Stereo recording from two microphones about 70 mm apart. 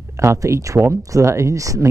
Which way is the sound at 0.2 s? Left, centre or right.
Right.